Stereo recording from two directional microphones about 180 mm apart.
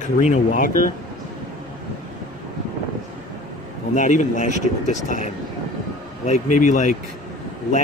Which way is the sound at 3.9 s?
45° left (ahead or behind).